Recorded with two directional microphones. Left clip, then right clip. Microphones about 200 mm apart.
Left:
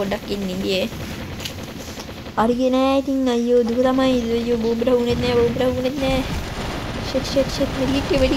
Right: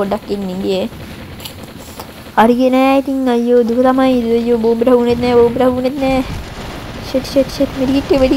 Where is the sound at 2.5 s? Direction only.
40° right (ahead or behind).